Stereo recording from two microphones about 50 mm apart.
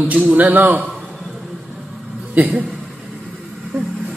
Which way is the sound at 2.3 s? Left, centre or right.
Right.